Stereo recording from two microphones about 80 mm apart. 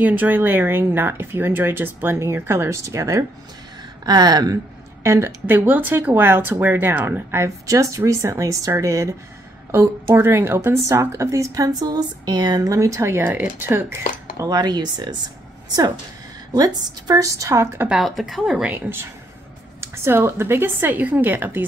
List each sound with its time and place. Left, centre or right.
0.0 s speech: right
4.0 s speech: right
5.0 s speech: right
10.1 s speech: right
13.2 s speech: right
14.3 s speech: right
16.5 s a woman's voice: right
18.0 s a woman's voice: centre
18.6 s speech: right